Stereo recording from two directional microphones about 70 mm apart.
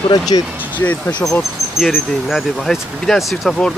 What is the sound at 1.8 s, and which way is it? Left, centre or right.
Speech, centre.